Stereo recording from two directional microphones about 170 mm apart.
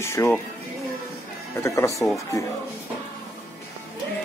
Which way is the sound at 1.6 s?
15° left (ahead or behind).